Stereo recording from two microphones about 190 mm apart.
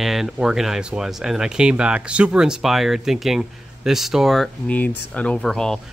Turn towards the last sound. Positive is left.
turn(degrees=0)  # may be behind; listen again after turning